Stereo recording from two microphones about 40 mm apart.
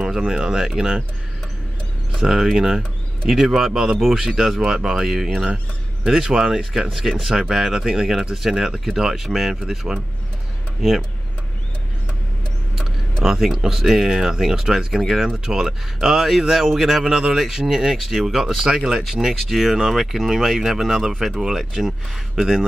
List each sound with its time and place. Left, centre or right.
0.2 s speech: centre
2.2 s speech: centre
13.2 s speech: centre